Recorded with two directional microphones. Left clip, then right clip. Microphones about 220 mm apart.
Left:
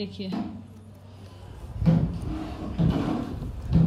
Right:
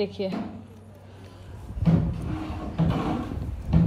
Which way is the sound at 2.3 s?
25° right (ahead or behind).